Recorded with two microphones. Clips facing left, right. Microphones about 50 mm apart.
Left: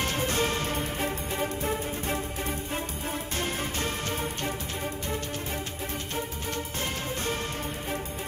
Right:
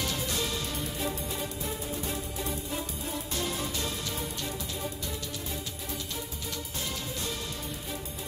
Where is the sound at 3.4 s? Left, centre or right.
Left.